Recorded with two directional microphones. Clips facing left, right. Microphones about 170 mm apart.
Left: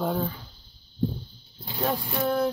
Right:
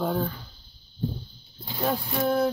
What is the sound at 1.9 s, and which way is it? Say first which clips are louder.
Speech: right 2 dB; centre (ahead or behind).